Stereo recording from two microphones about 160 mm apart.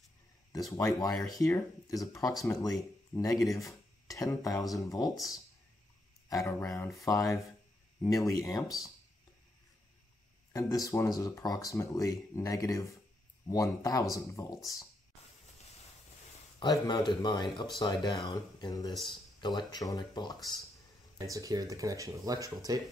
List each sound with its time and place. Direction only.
0.5 s speech: 20° left (ahead or behind)
6.2 s a sound: 20° left (ahead or behind)
7.1 s speech: 20° left (ahead or behind)
10.5 s speech: 20° left (ahead or behind)
16.5 s speech: 25° left (ahead or behind)
21.2 s speech: 20° right (ahead or behind)